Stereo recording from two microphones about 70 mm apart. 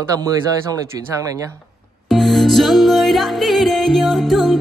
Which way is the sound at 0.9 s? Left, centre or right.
Right.